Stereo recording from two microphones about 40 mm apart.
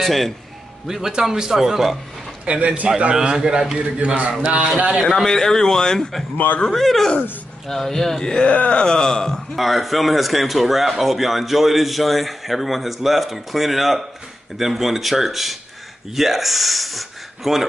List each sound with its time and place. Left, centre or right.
0.0 s speech: centre
0.8 s speech: centre
2.4 s a man's voice: right
3.2 s speech: centre
4.0 s a man's voice: right
5.0 s a man's voice: centre
6.3 s speech: left
6.7 s a man's voice: centre
8.5 s speech: left; by 9.4 s centre
9.6 s speech: centre